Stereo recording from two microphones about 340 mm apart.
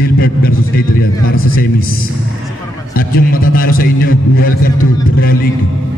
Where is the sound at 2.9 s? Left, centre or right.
Left.